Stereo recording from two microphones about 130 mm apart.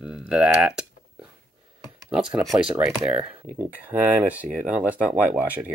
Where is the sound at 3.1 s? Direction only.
10° right (ahead or behind).